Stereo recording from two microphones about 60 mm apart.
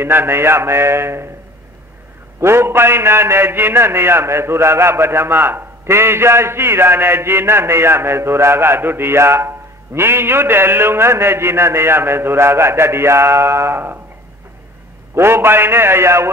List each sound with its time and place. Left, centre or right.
0.0 s a man's voice: right
2.4 s a man's voice: right
15.1 s a man's voice: right